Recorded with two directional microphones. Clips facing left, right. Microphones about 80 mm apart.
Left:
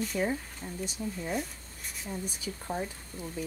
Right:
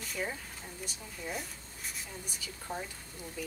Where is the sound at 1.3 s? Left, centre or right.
Centre.